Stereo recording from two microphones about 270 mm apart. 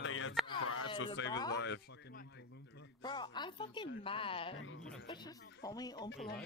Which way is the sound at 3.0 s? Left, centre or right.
Centre.